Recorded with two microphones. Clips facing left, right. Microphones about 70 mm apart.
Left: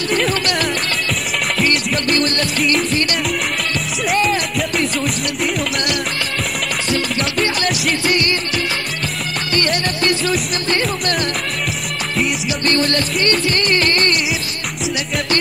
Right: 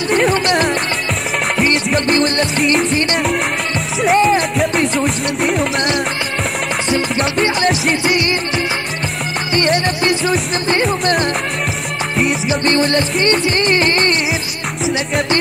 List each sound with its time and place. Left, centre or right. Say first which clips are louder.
0.1 s music: right 5 dB; centre
1.9 s music: right 3 dB; right
2.5 s music: right 3 dB; right
4.0 s music: right 6 dB; right
4.7 s music: right 3 dB; centre
7.4 s music: right 4 dB; right
10.0 s music: right 2 dB; centre
12.4 s music: right 3 dB; right